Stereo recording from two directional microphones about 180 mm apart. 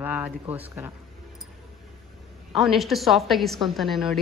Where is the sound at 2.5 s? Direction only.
Centre (ahead or behind).